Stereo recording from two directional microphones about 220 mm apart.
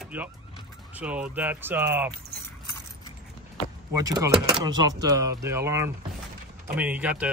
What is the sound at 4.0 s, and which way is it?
Speech, 15° right (ahead or behind).